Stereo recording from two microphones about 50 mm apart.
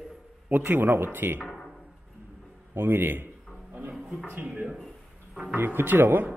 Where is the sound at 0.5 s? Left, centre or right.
Right.